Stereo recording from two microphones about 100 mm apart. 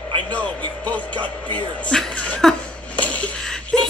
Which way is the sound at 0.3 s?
15° left (ahead or behind).